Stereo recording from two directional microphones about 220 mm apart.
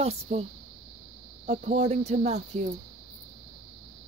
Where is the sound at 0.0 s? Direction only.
30° right (ahead or behind).